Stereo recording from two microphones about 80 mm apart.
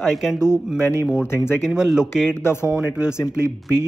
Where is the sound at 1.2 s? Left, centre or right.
Left.